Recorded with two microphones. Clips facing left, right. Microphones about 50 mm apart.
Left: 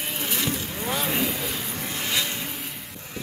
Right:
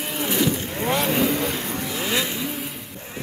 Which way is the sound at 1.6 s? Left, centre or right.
Right.